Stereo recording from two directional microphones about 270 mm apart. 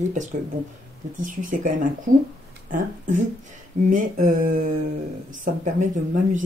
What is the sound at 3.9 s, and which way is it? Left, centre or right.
Speech, right.